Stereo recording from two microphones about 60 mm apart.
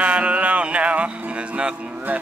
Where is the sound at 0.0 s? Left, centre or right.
Right.